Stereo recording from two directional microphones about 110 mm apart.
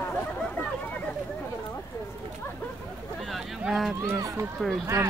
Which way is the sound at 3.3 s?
Centre (ahead or behind).